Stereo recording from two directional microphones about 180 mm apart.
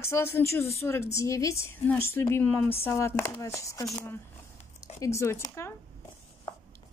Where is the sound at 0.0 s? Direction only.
15° left (ahead or behind).